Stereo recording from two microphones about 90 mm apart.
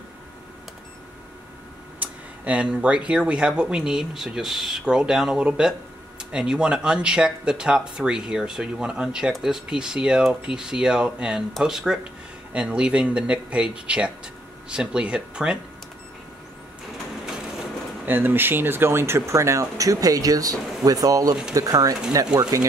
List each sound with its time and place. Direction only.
2.0 s speech: 15° right (ahead or behind)
18.0 s speech: 25° right (ahead or behind); by 22.4 s 45° right (ahead or behind)